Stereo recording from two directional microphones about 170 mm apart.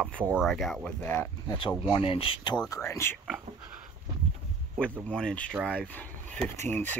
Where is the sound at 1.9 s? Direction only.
30° left (ahead or behind).